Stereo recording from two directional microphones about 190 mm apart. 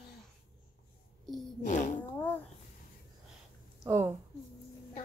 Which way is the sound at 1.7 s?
40° left (ahead or behind).